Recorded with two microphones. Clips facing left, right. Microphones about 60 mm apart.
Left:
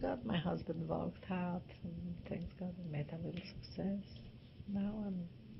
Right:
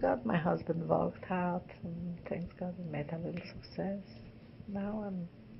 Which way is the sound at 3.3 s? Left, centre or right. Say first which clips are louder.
Right 5 dB; right.